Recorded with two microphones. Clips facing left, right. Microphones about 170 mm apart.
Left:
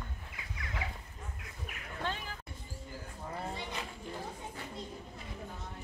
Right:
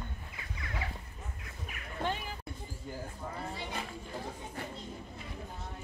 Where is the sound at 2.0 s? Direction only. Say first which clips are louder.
Right 3 dB; 15° right (ahead or behind).